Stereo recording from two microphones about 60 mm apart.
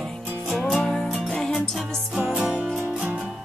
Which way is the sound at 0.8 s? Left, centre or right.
Centre.